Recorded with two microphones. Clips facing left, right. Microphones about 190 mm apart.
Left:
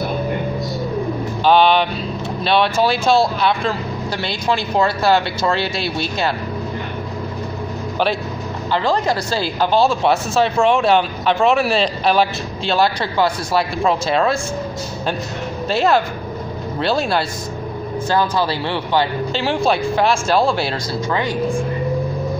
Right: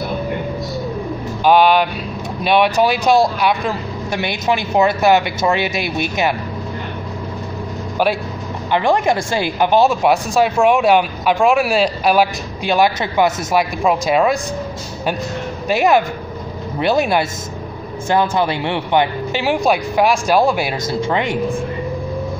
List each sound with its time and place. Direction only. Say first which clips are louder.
1.4 s speech: right 1 dB; 10° right (ahead or behind)
8.7 s speech: right 3 dB; 20° right (ahead or behind)
15.7 s speech: right 2 dB; 15° right (ahead or behind)